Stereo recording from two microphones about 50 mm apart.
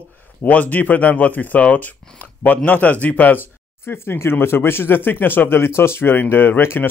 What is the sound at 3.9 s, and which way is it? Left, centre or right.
Speech, left.